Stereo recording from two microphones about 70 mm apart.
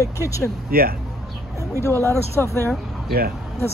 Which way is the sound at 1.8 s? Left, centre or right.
Left.